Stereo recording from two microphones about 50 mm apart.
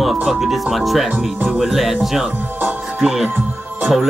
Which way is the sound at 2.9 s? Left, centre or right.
Centre.